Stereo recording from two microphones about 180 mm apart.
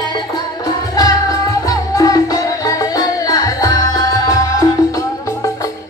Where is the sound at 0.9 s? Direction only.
20° left (ahead or behind).